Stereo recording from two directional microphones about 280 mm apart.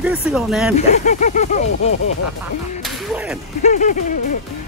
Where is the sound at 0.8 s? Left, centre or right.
Left.